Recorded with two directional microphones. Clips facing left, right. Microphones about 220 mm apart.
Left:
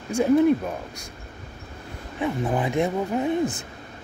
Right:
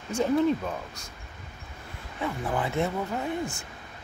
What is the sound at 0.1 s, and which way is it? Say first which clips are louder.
Speech: left 6 dB; 10° left (ahead or behind).